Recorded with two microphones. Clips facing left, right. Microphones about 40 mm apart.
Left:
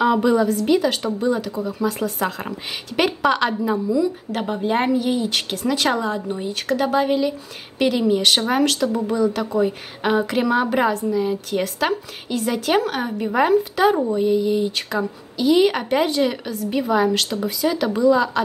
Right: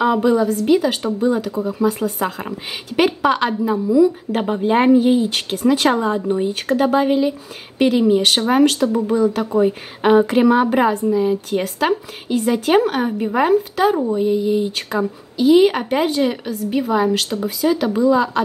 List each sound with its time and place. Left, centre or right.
0.0 s a woman's voice: centre
3.9 s a woman's voice: centre
4.9 s speech: right
5.2 s a woman's voice: centre